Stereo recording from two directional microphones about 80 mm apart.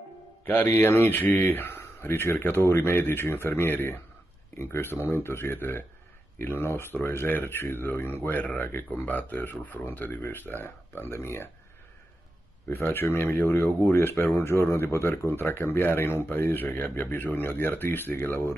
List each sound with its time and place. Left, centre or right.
0.5 s speech: left
12.6 s speech: left